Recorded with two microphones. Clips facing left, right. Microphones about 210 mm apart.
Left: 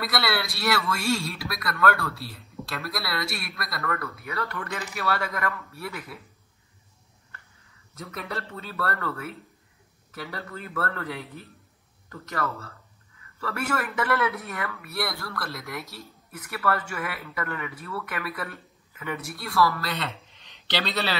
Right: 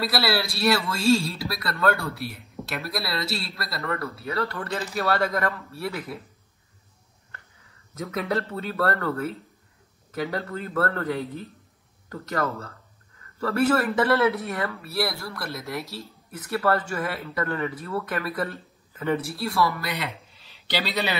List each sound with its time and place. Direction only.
0.0 s speech: 30° right (ahead or behind)
8.0 s speech: 45° right (ahead or behind); by 19.6 s 25° right (ahead or behind)
19.8 s a man's voice: 15° right (ahead or behind)